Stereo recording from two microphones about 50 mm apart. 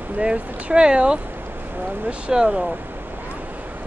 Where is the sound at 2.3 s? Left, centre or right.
Centre.